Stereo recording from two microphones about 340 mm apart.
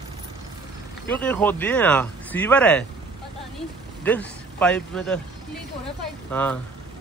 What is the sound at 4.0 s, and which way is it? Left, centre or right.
Speech, centre.